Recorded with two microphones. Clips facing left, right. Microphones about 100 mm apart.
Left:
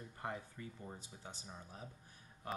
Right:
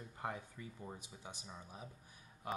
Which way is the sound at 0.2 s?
15° right (ahead or behind).